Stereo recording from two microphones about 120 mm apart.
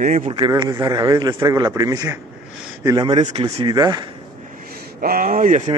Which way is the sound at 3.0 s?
50° right (ahead or behind).